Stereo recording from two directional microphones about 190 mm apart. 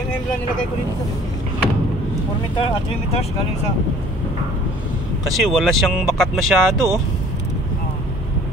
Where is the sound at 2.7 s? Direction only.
30° left (ahead or behind).